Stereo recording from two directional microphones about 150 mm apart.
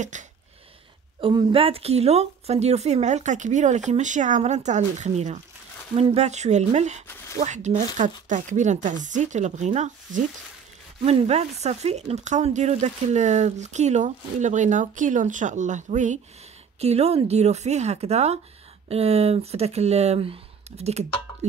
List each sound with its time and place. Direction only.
0.1 s speech: 55° right (ahead or behind)
1.2 s speech: 35° right (ahead or behind); by 16.2 s 55° right (ahead or behind)
16.8 s speech: 45° right (ahead or behind)